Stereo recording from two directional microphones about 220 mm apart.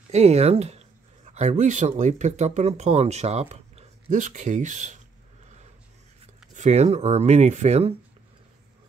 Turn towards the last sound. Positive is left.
turn(degrees=-30)  # may be behind; listen again after turning